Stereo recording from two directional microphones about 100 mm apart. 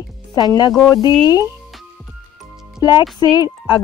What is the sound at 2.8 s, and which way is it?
Speech, 45° left (ahead or behind).